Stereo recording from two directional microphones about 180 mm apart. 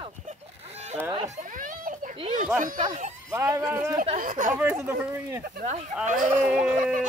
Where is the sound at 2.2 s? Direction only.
40° right (ahead or behind).